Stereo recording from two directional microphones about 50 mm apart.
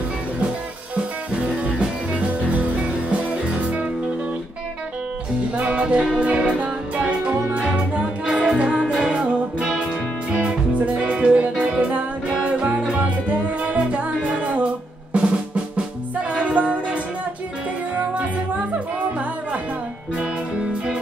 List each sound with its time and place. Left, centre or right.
0.9 s music: right
5.6 s music: right
20.2 s music: centre